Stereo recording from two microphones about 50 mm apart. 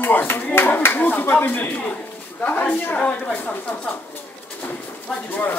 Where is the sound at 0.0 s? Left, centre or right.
Left.